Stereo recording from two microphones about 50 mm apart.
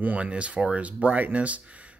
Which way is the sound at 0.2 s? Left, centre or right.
Right.